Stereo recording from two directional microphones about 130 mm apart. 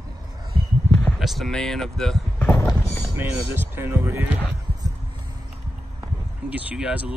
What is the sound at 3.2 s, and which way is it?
Speech, 15° right (ahead or behind).